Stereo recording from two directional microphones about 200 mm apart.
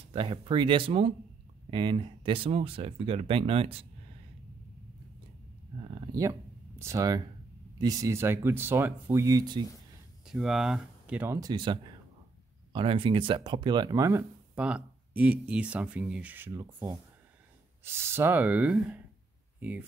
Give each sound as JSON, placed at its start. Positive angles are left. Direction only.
{"t": 0.1, "sound": "speech", "side_deg": -25}
{"t": 5.8, "sound": "speech", "side_deg": -25}
{"t": 10.2, "sound": "speech", "side_deg": 0}